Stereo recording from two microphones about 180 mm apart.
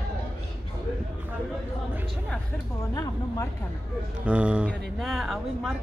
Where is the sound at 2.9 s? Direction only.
20° left (ahead or behind).